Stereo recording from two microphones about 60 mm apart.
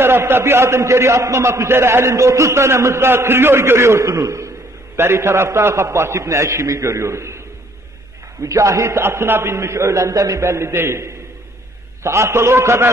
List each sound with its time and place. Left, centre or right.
0.0 s a man's voice: right
4.0 s a man's voice: right
4.9 s a man's voice: right
8.4 s a man's voice: right